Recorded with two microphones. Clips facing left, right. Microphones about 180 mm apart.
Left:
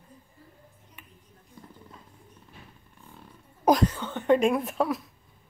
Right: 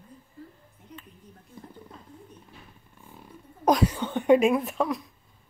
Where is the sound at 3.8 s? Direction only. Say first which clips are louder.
Right 2 dB; 15° right (ahead or behind); by 5.0 s centre (ahead or behind).